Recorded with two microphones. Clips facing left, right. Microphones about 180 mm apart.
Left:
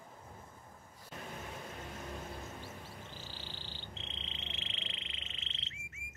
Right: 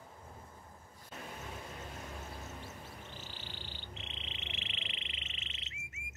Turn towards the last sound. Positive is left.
turn(degrees=-15)  # may be behind; listen again after turning